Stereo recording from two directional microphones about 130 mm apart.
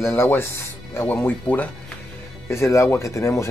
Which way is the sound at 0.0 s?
20° left (ahead or behind).